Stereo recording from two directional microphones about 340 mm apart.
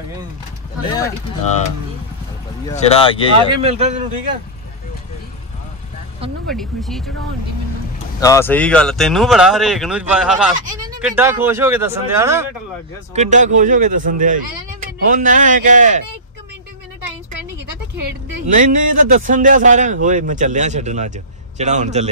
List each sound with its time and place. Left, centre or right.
2.6 s speech: centre
3.3 s speech: centre
6.4 s speech: centre
8.2 s speech: centre
13.1 s a man's voice: right
18.5 s a man's voice: right